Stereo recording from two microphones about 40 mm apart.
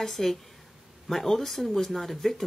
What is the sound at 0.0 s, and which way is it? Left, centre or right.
Speech, centre.